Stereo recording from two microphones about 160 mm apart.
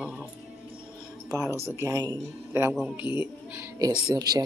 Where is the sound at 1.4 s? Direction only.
15° right (ahead or behind).